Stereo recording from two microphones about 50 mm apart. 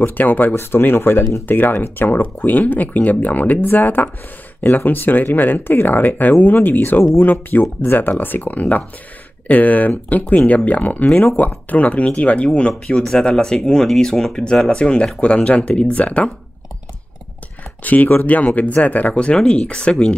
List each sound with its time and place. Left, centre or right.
0.0 s speech: left
0.6 s speech: left
13.1 s speech: centre
17.8 s speech: left; by 20.2 s centre